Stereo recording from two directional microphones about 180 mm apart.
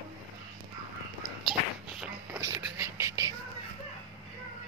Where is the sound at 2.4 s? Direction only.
15° right (ahead or behind).